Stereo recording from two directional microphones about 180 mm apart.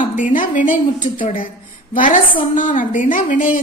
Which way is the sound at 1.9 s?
45° left (ahead or behind).